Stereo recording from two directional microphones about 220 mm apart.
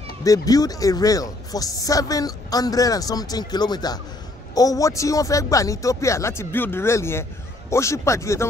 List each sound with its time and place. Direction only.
0.2 s speech: 15° left (ahead or behind)